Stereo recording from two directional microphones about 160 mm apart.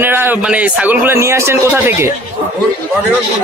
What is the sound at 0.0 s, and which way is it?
A man's voice, 15° right (ahead or behind).